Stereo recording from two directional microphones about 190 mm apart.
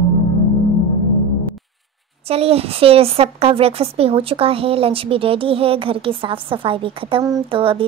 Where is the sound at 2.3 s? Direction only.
30° right (ahead or behind).